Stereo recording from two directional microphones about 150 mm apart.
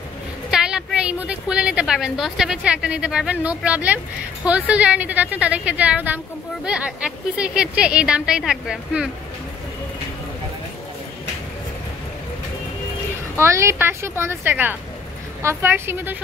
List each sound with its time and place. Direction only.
0.5 s a woman's voice: 5° right (ahead or behind)
13.4 s a woman's voice: 20° right (ahead or behind)